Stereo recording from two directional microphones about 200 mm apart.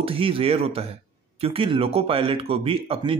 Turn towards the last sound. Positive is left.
turn(degrees=-25)  # may be behind; listen again after turning